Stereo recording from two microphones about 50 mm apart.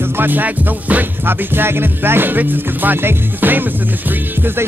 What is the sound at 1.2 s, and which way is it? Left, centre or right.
Music, right.